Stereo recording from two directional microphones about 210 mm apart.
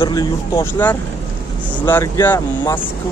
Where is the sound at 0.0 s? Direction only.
20° left (ahead or behind).